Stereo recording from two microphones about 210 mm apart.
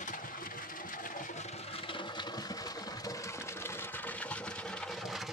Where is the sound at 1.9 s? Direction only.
25° left (ahead or behind).